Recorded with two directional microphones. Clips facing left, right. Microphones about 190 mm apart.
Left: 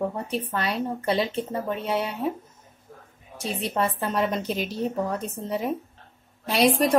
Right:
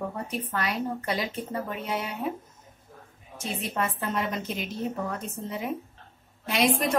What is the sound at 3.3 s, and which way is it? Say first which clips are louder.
A woman's voice: left 4 dB; 35° left (ahead or behind).